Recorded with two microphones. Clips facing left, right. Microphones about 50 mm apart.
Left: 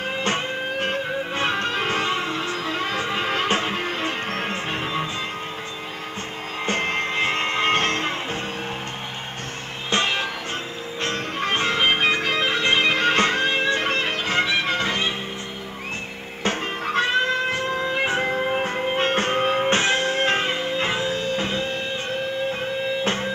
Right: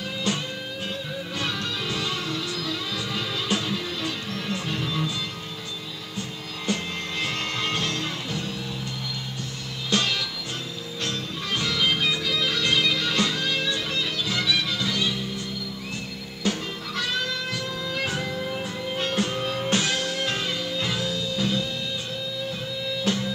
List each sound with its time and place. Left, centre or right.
0.2 s music: left
6.6 s music: left
9.8 s music: left
16.4 s music: left